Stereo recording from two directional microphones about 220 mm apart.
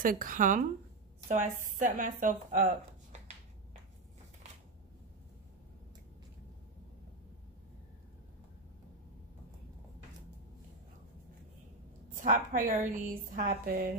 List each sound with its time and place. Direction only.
0.0 s a woman's voice: 40° right (ahead or behind)
12.2 s a woman's voice: 35° right (ahead or behind)